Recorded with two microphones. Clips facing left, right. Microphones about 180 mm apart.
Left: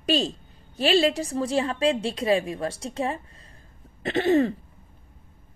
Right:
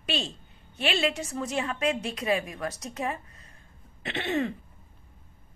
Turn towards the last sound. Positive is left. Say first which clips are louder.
# left 8 dB
turn(degrees=35)  # may be behind; listen again after turning